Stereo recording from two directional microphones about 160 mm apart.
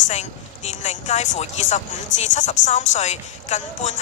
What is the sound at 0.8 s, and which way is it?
A woman's voice, 45° left (ahead or behind).